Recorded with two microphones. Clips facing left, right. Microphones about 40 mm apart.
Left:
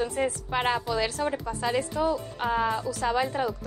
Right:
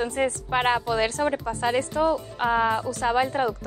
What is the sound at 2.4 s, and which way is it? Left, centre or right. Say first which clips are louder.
Speech: right 4 dB; centre.